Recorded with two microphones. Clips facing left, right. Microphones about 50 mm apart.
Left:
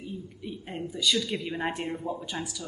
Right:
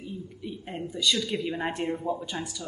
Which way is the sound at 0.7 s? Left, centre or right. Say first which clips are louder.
Right 1 dB; centre.